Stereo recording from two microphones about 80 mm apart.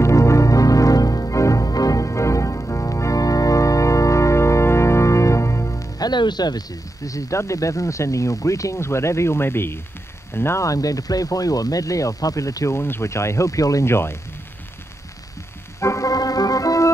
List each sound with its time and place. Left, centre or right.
0.0 s music: left
5.9 s speech: left
15.8 s organ: left